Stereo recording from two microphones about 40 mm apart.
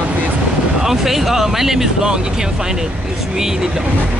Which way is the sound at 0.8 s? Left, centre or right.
Centre.